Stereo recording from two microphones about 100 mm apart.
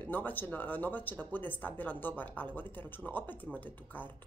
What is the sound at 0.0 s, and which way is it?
Speech, 20° left (ahead or behind).